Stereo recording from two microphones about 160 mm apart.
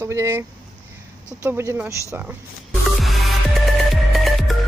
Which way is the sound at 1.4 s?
15° right (ahead or behind).